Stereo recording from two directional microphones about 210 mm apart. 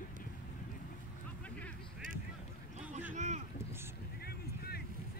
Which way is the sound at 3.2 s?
35° right (ahead or behind).